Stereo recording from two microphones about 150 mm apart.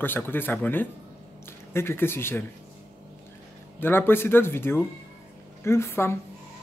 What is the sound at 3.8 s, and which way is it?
A man's voice, 15° left (ahead or behind).